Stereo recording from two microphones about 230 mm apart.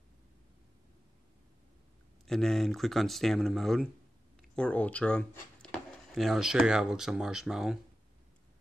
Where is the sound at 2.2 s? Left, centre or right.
Centre.